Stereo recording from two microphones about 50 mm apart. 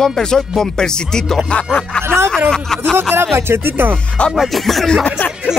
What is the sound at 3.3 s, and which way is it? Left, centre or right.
Speech, right.